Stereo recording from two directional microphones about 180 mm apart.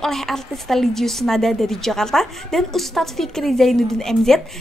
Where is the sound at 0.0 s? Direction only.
Centre (ahead or behind).